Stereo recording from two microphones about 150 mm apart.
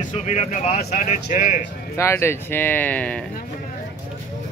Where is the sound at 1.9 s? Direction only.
15° left (ahead or behind).